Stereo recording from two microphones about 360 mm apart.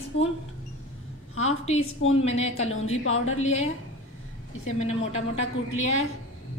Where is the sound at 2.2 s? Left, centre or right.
Centre.